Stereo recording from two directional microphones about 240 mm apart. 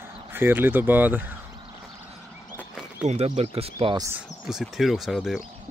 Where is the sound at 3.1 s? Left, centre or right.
Right.